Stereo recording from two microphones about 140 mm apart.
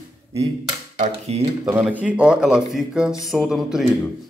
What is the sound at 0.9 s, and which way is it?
Speech, 55° right (ahead or behind).